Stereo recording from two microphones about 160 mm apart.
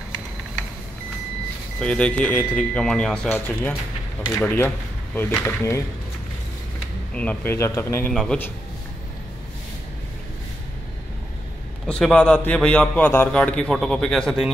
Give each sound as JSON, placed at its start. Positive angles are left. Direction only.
{"t": 1.8, "sound": "a man's voice", "side_deg": 10}
{"t": 7.2, "sound": "speech", "side_deg": 10}
{"t": 8.1, "sound": "a man's voice", "side_deg": 5}
{"t": 11.9, "sound": "a man's voice", "side_deg": 5}